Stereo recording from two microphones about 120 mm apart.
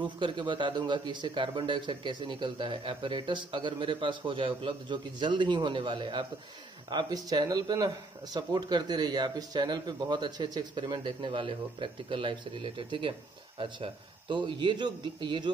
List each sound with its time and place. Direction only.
0.0 s a man's voice: 40° right (ahead or behind)
14.3 s a man's voice: 40° right (ahead or behind)